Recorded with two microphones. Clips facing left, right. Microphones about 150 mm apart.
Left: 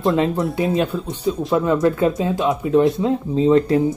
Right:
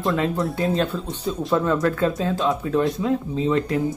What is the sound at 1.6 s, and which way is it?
Speech, 15° left (ahead or behind).